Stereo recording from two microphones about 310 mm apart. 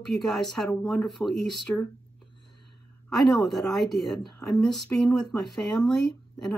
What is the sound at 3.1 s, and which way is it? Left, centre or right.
A woman's voice, centre.